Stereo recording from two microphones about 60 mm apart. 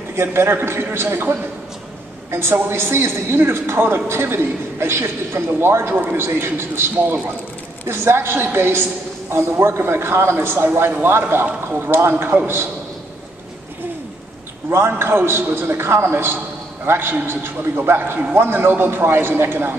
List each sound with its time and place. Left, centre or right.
0.1 s a man's voice: right
2.3 s a man's voice: right
14.7 s a man's voice: right